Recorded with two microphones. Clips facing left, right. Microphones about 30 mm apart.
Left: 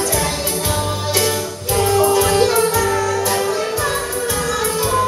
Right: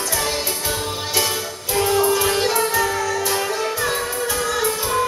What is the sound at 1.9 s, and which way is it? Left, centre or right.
Music, centre.